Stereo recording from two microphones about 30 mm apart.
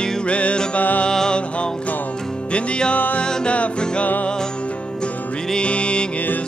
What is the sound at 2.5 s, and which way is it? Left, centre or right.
Music, left.